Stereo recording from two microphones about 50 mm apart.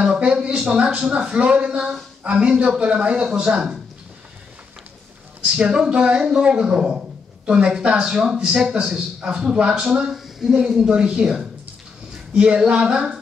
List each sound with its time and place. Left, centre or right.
0.0 s a man's voice: right
5.6 s a man's voice: centre
8.0 s a man's voice: centre
10.1 s a sound: centre
10.9 s a man's voice: centre